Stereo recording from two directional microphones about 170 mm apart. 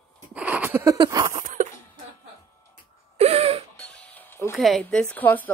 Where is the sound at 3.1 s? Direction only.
35° right (ahead or behind).